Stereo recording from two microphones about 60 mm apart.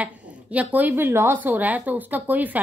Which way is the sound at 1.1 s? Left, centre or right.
Right.